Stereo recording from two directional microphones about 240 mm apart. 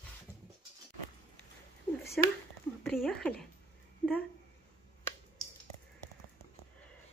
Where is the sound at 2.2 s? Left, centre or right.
Centre.